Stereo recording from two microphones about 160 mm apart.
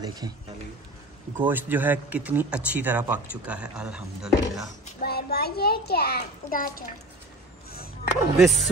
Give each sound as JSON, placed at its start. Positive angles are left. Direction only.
{"t": 0.0, "sound": "speech", "side_deg": -25}
{"t": 1.4, "sound": "a man's voice", "side_deg": -10}
{"t": 5.0, "sound": "a child's voice", "side_deg": 80}
{"t": 7.7, "sound": "a sound", "side_deg": 70}
{"t": 8.4, "sound": "speech", "side_deg": 0}